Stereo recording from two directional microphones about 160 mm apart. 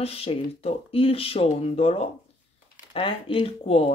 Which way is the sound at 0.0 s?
40° left (ahead or behind).